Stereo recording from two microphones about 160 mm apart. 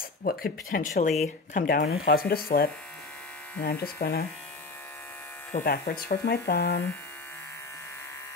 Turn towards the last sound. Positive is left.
turn(degrees=85)